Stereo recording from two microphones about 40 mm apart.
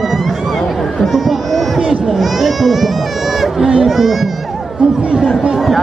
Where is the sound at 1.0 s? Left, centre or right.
Centre.